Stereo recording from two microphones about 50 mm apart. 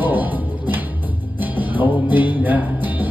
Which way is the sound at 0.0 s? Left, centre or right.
Right.